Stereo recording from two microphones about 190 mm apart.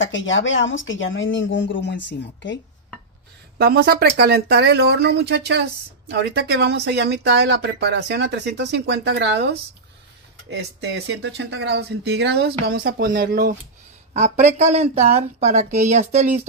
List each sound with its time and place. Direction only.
0.0 s speech: 85° left
3.5 s speech: 55° right (ahead or behind)
10.5 s speech: 65° right (ahead or behind); by 13.5 s 50° right (ahead or behind)
14.1 s speech: 35° right (ahead or behind)